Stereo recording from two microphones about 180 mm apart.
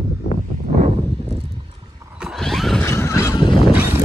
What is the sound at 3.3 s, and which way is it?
Fowl, 25° left (ahead or behind).